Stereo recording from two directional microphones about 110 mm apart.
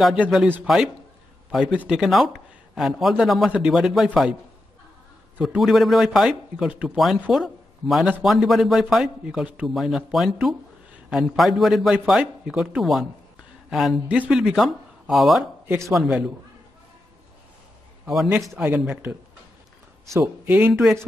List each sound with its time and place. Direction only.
0.0 s a man's voice: 5° right (ahead or behind)
5.4 s a man's voice: centre (ahead or behind)
18.6 s speech: 15° right (ahead or behind)
20.2 s speech: 15° right (ahead or behind)